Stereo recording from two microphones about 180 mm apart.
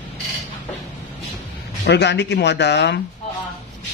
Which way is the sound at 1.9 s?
75° left (ahead or behind).